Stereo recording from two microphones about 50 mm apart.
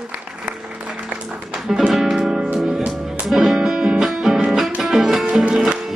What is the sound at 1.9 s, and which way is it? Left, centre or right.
Music, centre.